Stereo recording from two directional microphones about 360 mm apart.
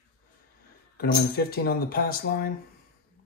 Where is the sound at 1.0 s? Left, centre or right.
Left.